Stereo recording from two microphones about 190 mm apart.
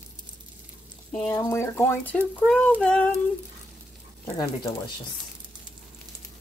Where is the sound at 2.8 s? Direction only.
5° left (ahead or behind).